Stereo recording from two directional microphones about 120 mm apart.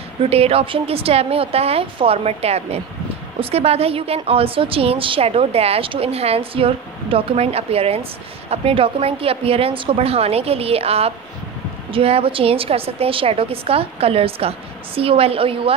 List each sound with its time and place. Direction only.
0.2 s a woman's voice: 55° right (ahead or behind)